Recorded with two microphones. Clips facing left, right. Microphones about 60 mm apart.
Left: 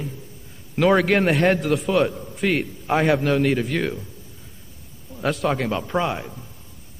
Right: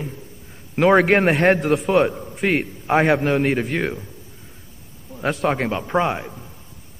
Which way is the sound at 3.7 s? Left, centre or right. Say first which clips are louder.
Right 1 dB; right.